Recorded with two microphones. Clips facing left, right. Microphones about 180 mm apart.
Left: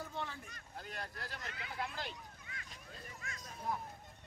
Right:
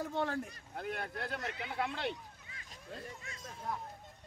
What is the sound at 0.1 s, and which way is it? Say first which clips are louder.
Speech: right 9 dB; 60° right (ahead or behind).